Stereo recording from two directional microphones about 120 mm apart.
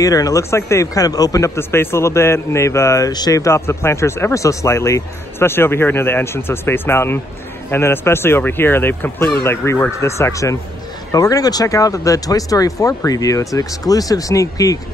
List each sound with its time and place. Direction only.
0.0 s a man's voice: 30° left (ahead or behind)